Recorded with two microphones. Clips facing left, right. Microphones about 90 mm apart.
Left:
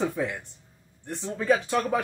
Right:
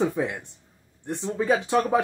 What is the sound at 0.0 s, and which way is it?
Speech, 20° right (ahead or behind).